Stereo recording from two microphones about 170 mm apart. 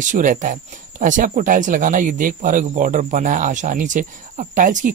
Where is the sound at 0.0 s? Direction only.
50° right (ahead or behind).